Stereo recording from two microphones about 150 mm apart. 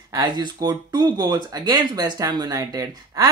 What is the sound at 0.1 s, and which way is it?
Speech, 25° right (ahead or behind).